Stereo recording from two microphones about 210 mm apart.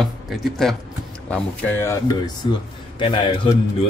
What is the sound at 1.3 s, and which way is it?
A man's voice, 10° left (ahead or behind).